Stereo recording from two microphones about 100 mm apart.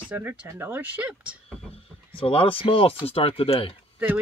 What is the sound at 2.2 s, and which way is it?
Speech, 65° left (ahead or behind).